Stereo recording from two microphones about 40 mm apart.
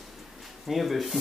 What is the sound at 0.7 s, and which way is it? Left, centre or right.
Speech, centre.